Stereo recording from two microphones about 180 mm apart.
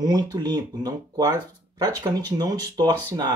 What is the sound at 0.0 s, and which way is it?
Speech, 20° right (ahead or behind).